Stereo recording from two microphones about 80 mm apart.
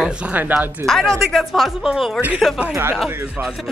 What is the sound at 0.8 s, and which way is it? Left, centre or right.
A woman's voice, centre.